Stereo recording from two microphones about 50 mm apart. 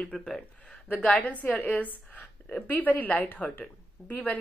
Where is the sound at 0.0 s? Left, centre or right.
Centre.